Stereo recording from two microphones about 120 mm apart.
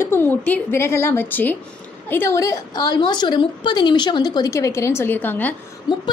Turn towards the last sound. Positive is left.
turn(degrees=35)  # may be behind; listen again after turning